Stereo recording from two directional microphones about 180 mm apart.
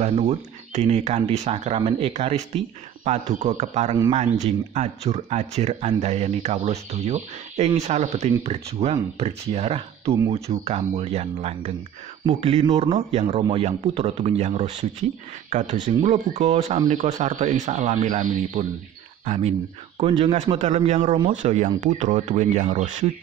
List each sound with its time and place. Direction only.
0.0 s speech: 35° right (ahead or behind)